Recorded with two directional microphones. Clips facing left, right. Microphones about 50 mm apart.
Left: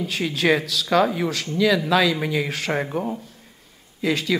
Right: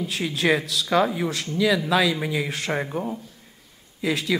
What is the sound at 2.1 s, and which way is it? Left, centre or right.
A man's voice, centre.